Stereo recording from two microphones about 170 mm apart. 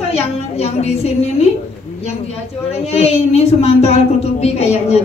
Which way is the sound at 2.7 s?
35° left (ahead or behind).